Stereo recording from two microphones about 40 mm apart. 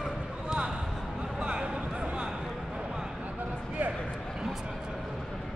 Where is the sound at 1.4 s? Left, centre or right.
Right.